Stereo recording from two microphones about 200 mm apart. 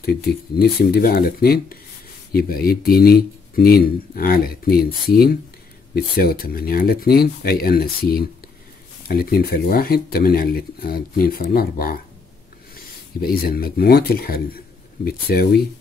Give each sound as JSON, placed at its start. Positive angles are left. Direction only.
{"t": 0.6, "sound": "speech", "side_deg": 50}
{"t": 13.2, "sound": "speech", "side_deg": 50}